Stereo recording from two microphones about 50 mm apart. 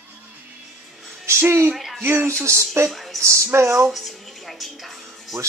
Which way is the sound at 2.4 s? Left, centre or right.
Right.